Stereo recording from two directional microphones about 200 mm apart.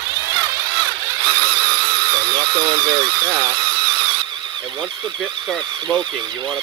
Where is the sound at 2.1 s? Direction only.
20° right (ahead or behind).